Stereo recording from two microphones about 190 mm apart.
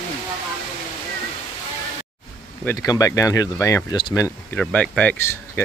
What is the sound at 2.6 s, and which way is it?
Speech, 15° left (ahead or behind).